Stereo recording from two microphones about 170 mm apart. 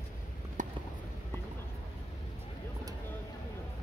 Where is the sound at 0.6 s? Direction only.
50° right (ahead or behind).